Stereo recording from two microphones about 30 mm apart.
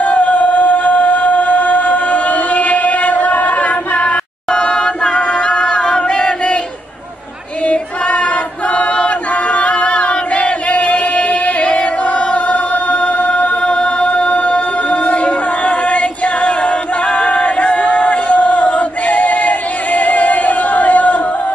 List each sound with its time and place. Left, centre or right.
0.0 s music: left
4.5 s singing: left
7.6 s choir: left
13.6 s music: left